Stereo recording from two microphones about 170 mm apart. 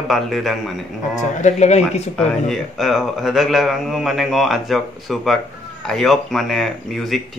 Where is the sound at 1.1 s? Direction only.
45° left (ahead or behind).